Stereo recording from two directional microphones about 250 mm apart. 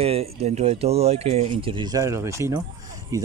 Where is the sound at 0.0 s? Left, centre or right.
Right.